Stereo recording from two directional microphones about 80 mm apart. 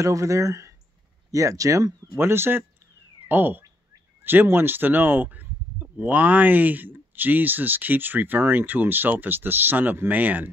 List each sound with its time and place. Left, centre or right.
0.0 s speech: right
2.1 s speech: right